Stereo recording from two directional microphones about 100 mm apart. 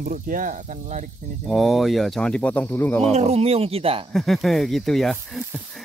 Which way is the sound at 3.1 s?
90° right.